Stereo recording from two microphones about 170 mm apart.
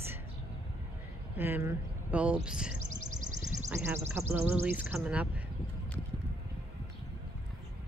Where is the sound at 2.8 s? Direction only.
45° right (ahead or behind).